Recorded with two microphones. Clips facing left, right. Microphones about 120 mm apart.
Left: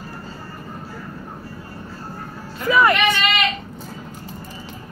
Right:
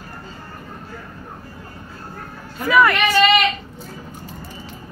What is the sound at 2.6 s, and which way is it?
Speech, 25° left (ahead or behind).